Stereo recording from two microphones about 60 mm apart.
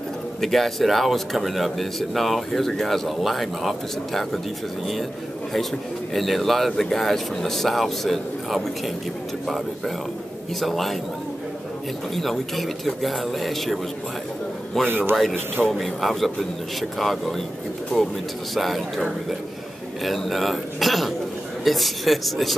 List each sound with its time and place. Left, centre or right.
0.4 s speech: centre
6.1 s speech: centre
10.6 s speech: centre
12.2 s speech: centre
14.9 s a man's voice: right
15.7 s speech: centre
18.5 s speech: centre